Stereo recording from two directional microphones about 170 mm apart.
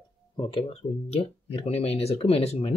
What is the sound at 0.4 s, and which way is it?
Speech, 30° left (ahead or behind).